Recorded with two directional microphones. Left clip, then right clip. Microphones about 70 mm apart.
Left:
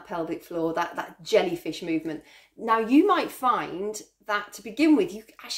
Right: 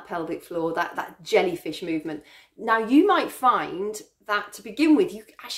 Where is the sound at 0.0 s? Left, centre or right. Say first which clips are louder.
Right 1 dB; right.